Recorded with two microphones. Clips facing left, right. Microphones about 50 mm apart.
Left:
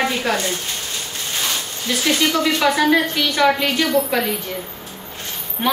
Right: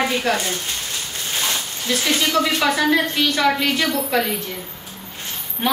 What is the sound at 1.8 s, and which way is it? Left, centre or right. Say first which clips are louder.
A woman's voice: left 2 dB; centre.